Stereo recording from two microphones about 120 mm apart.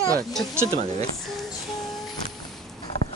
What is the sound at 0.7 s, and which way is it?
Speech, 60° right (ahead or behind).